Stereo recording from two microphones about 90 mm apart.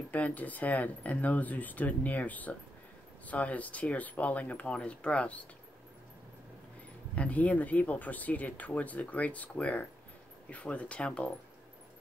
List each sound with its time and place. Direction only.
0.1 s speech: 15° left (ahead or behind)
7.2 s speech: 15° left (ahead or behind)